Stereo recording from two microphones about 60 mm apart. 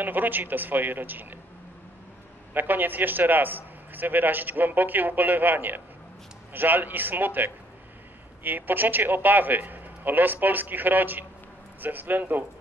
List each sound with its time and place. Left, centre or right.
0.0 s a man's voice: right
2.5 s a man's voice: right